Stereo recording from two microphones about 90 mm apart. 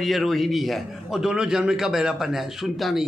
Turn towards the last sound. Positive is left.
turn(degrees=0)  # may be behind; listen again after turning